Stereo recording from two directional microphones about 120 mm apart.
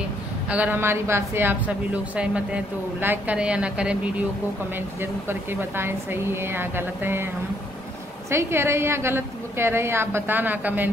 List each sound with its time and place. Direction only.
0.5 s a woman's voice: 15° right (ahead or behind)
8.3 s a woman's voice: 20° right (ahead or behind)